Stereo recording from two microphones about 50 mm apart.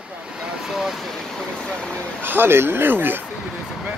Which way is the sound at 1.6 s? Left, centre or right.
Centre.